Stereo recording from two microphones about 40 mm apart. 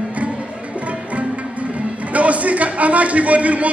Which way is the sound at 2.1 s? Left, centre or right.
Right.